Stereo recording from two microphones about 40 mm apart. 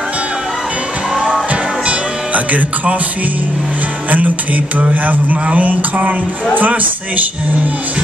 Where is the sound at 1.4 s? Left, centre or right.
Right.